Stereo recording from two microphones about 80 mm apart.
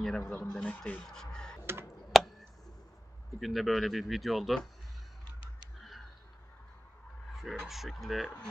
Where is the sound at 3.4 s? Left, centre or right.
Centre.